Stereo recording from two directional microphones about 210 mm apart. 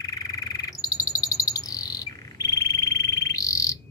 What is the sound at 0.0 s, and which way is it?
Frog, 15° left (ahead or behind).